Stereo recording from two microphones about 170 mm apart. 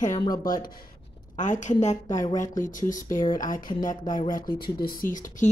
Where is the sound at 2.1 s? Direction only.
20° left (ahead or behind).